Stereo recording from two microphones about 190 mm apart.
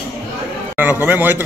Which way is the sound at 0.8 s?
10° right (ahead or behind).